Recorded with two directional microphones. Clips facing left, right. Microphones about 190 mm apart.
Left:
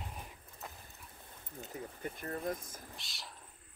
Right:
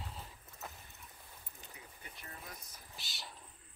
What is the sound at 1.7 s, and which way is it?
Speech, 50° left (ahead or behind).